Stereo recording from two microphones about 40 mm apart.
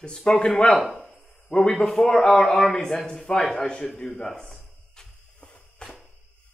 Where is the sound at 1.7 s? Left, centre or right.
Centre.